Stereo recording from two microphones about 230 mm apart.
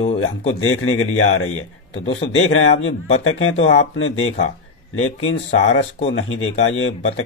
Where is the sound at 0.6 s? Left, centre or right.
Left.